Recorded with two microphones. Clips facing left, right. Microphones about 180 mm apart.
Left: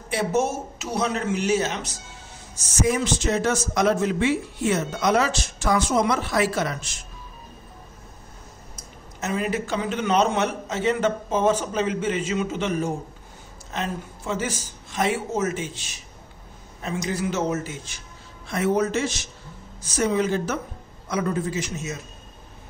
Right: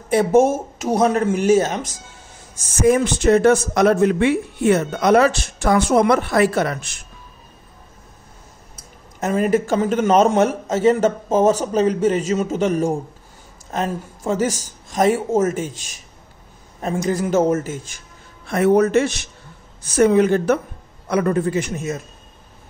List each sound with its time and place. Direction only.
0.1 s a man's voice: 50° right (ahead or behind)
9.2 s a man's voice: 45° right (ahead or behind)